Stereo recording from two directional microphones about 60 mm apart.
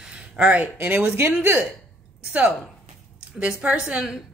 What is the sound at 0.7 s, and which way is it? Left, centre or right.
Speech, right.